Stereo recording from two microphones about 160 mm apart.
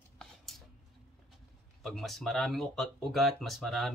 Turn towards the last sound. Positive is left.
turn(degrees=0)  # may be behind; listen again after turning